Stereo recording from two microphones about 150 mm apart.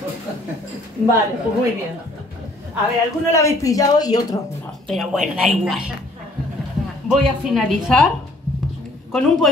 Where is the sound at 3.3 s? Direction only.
20° left (ahead or behind).